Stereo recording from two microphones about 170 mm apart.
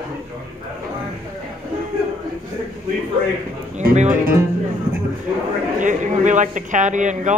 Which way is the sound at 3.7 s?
45° right (ahead or behind).